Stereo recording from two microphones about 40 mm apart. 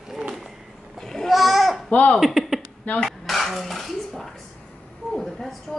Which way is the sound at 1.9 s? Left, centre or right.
Left.